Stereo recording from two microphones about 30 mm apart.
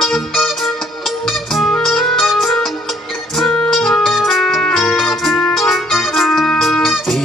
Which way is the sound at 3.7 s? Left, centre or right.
Centre.